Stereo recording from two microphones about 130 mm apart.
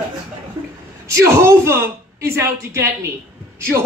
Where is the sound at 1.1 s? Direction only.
20° right (ahead or behind).